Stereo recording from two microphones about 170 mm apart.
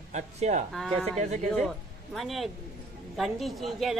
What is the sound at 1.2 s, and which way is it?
Speech, 45° right (ahead or behind).